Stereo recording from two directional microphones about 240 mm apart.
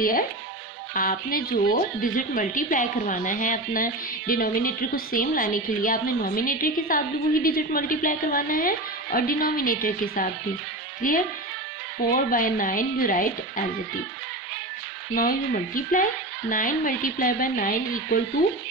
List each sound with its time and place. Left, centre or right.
0.9 s a woman's voice: left
15.1 s a woman's voice: left